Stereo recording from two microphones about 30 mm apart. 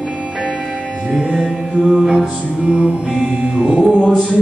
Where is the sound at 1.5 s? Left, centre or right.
Right.